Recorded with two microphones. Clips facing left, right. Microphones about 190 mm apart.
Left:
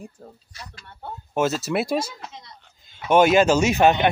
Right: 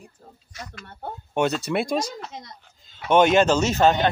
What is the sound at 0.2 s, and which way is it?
Speech, 45° left (ahead or behind).